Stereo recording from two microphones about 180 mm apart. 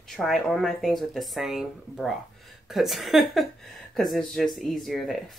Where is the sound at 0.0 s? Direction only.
Centre (ahead or behind).